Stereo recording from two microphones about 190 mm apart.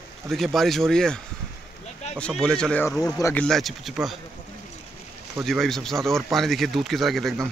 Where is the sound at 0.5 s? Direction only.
Centre (ahead or behind).